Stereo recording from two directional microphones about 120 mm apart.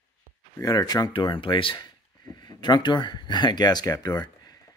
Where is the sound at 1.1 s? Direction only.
45° left (ahead or behind).